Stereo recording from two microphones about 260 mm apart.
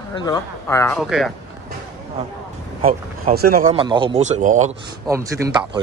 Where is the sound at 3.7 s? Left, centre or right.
Centre.